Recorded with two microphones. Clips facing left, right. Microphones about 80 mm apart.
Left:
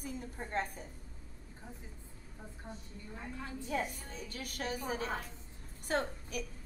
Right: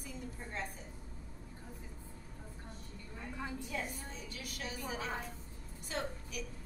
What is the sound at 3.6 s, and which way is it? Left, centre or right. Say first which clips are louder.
A woman's voice: left 4 dB; left.